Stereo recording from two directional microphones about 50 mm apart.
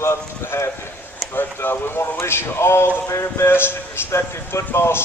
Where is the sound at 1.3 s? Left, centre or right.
Left.